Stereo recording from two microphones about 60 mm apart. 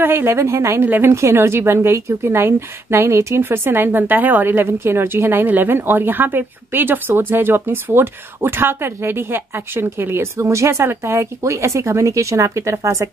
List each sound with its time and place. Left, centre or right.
0.0 s a woman's voice: right
0.8 s a woman's voice: right
1.1 s a woman's voice: right
10.3 s speech: right